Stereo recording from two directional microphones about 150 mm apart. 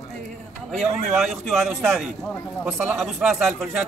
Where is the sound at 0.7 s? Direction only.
Centre (ahead or behind).